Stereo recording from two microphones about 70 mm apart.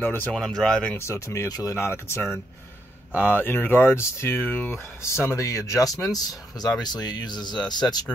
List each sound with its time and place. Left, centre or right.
0.0 s speech: left
0.3 s speech: centre
0.9 s speech: left
1.5 s speech: left
1.8 s speech: left
4.4 s speech: left
5.0 s speech: left
6.8 s speech: left